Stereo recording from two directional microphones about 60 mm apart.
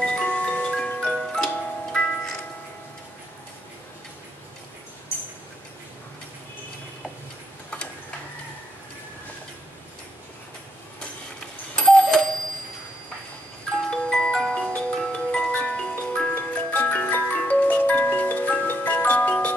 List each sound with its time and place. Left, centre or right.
0.0 s chime: centre
1.0 s music: centre
11.8 s alarm clock: centre
13.8 s music: centre
16.3 s music: left